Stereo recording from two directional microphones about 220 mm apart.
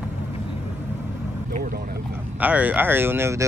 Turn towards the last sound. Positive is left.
turn(degrees=-10)  # may be behind; listen again after turning